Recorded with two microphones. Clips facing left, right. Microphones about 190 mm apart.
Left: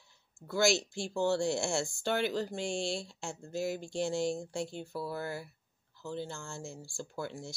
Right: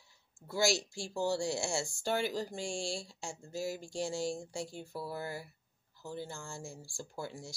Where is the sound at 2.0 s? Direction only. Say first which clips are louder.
Left 1 dB; 10° right (ahead or behind).